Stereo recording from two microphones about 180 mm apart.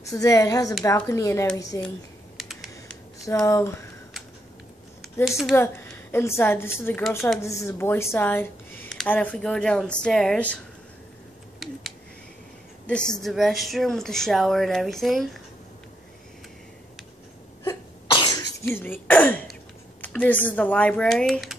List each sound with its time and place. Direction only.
0.1 s a woman's voice: 20° left (ahead or behind)
2.3 s computer keyboard: centre (ahead or behind)
3.4 s speech: 15° left (ahead or behind)
5.5 s speech: 15° left (ahead or behind)
12.8 s speech: 5° left (ahead or behind)
17.6 s cough: 25° left (ahead or behind)
18.8 s speech: 10° left (ahead or behind)